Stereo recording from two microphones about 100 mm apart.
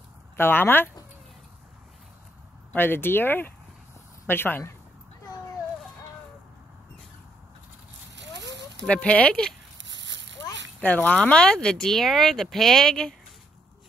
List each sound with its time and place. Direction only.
0.4 s speech: 20° left (ahead or behind)
2.7 s speech: 20° left (ahead or behind)
8.8 s speech: 10° left (ahead or behind)
10.8 s speech: 15° left (ahead or behind)